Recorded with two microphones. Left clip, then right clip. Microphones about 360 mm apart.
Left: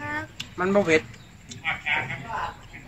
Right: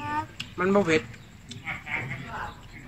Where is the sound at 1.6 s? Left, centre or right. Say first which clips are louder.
Left 7 dB; left.